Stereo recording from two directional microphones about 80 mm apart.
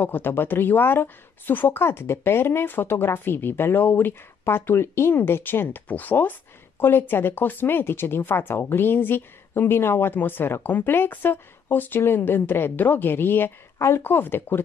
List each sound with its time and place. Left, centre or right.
0.0 s a woman's voice: left